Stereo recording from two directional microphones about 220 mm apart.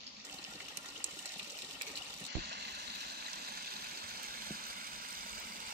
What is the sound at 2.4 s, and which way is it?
Stream, 50° right (ahead or behind).